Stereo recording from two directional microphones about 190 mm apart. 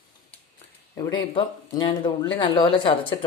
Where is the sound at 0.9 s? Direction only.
25° left (ahead or behind).